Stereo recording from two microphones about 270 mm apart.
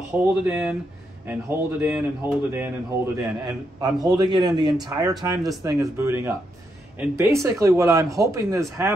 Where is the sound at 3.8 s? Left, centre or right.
Centre.